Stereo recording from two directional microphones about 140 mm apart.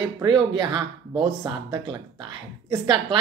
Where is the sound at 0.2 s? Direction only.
30° right (ahead or behind).